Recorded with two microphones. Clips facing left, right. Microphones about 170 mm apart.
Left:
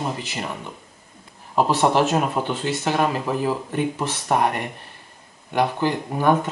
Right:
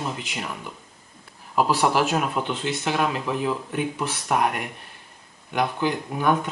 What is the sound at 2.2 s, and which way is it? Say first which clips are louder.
Speech: left 3 dB; 35° left (ahead or behind).